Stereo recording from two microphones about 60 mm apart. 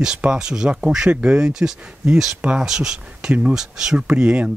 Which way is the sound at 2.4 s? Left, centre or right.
Right.